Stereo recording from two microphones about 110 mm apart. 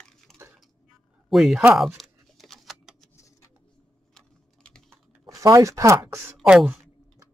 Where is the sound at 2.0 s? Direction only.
Centre (ahead or behind).